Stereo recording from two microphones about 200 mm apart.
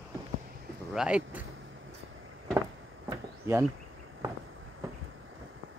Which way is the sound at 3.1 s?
10° right (ahead or behind).